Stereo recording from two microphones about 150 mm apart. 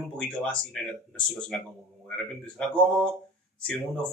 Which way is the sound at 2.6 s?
5° left (ahead or behind).